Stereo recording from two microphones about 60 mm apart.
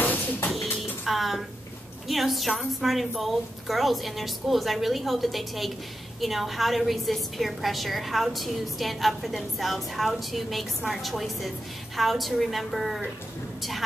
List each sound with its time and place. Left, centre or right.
0.0 s music: left
0.5 s a sound: centre
2.0 s a woman's voice: centre